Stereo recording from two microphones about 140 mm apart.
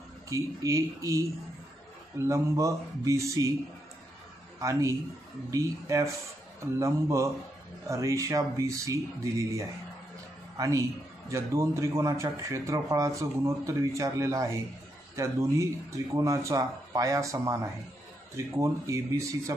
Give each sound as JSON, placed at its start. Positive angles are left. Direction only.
{"t": 0.3, "sound": "a man's voice", "side_deg": -25}
{"t": 4.6, "sound": "a man's voice", "side_deg": -20}